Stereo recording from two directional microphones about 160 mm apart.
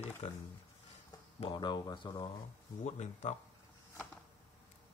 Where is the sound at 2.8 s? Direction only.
45° left (ahead or behind).